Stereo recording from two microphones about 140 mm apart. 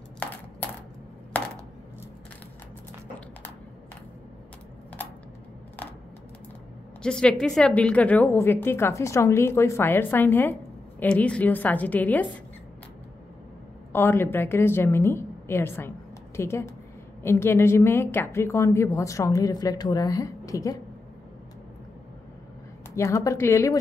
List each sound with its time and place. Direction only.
0.2 s coin: 15° left (ahead or behind)
7.0 s a woman's voice: 5° left (ahead or behind)
13.9 s a woman's voice: 15° left (ahead or behind)
22.9 s a woman's voice: 20° left (ahead or behind)